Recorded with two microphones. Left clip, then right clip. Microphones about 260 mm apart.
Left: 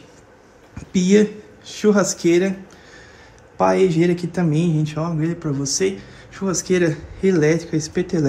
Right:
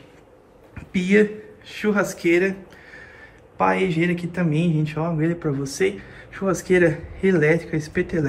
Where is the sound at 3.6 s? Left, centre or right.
Centre.